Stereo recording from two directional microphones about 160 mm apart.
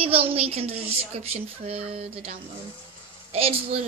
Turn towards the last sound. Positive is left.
turn(degrees=-40)  # may be behind; listen again after turning